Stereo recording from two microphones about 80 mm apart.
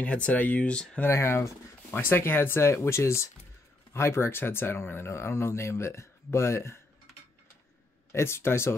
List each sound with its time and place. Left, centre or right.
0.0 s speech: centre
1.0 s speech: left
2.0 s speech: left
8.1 s speech: left